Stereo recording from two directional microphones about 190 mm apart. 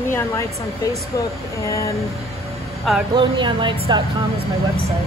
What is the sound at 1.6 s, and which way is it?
Speech, 15° left (ahead or behind).